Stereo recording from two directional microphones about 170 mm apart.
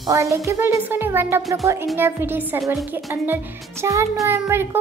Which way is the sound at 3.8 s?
15° right (ahead or behind).